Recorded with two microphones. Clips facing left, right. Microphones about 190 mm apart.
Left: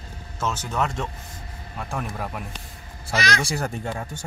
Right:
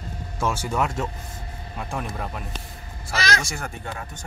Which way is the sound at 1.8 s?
Centre (ahead or behind).